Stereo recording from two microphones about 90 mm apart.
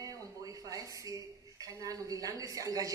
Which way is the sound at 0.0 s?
40° right (ahead or behind).